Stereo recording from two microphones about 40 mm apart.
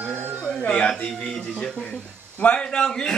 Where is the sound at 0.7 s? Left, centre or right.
Left.